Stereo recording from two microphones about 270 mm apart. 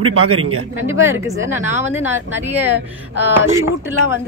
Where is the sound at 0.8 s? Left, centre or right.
Centre.